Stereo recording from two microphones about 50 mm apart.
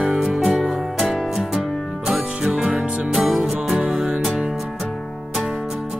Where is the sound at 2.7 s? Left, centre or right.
Right.